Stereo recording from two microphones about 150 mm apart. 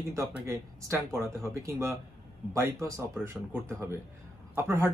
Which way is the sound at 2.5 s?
20° right (ahead or behind).